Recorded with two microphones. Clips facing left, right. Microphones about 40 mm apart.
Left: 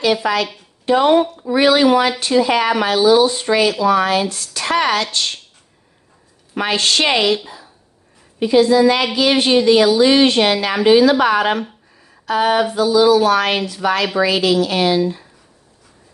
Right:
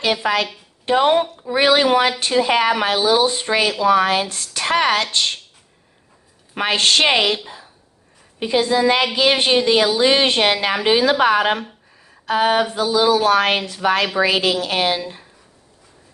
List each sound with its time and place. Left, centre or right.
0.0 s a woman's voice: right
6.5 s a woman's voice: right